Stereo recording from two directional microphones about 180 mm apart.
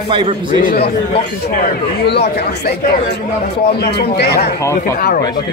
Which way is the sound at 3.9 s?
65° left (ahead or behind).